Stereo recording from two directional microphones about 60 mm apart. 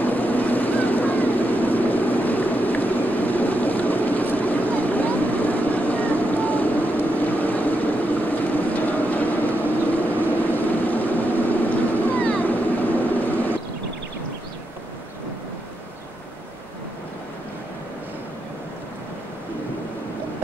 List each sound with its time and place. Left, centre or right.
0.0 s vehicle: left